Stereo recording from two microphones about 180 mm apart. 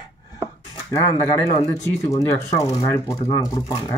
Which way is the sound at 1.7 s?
20° left (ahead or behind).